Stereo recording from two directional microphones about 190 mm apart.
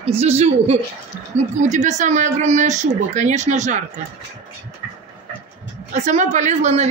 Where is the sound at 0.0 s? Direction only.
35° right (ahead or behind).